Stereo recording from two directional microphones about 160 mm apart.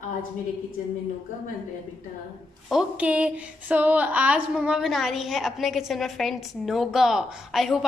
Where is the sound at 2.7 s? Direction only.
5° right (ahead or behind).